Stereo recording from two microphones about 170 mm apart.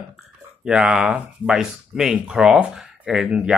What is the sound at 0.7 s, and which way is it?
Speech, 5° right (ahead or behind).